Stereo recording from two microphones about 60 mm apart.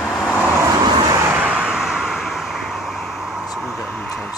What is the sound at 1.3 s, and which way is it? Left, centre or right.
Vehicle, right.